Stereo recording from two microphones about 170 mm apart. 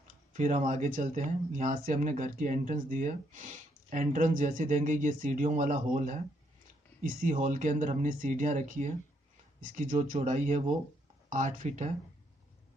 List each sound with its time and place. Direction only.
0.3 s speech: 45° right (ahead or behind)